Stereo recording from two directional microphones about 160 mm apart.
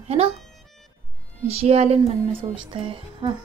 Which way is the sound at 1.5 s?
40° right (ahead or behind).